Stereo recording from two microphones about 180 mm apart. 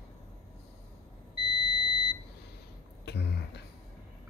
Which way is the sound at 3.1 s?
65° left (ahead or behind).